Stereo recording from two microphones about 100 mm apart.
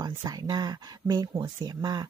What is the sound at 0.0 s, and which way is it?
Speech, 40° right (ahead or behind).